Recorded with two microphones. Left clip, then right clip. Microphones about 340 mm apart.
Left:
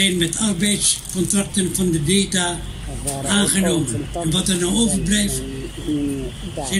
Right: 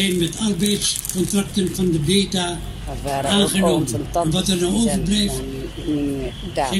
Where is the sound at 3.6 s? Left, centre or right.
Right.